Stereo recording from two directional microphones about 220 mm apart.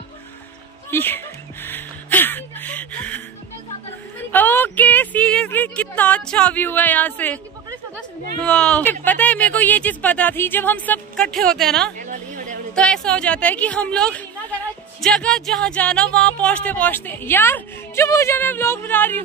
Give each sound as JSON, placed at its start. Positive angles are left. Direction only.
{"t": 0.8, "sound": "music", "side_deg": 10}
{"t": 4.3, "sound": "speech", "side_deg": 10}
{"t": 8.5, "sound": "a woman's voice", "side_deg": 5}
{"t": 12.0, "sound": "a sound", "side_deg": -35}
{"t": 12.7, "sound": "a woman's voice", "side_deg": 5}